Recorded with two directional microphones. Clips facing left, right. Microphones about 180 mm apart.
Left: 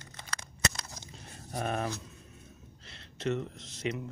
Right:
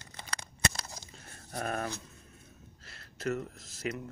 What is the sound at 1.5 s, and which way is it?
Speech, 15° left (ahead or behind).